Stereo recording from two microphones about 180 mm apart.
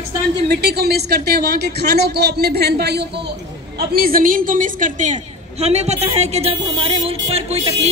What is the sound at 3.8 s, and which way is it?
A woman's voice, 55° right (ahead or behind).